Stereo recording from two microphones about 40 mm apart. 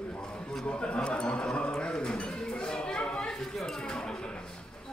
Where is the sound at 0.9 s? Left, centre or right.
Left.